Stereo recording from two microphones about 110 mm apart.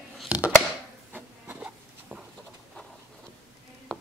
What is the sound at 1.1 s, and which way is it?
Printer, 15° right (ahead or behind).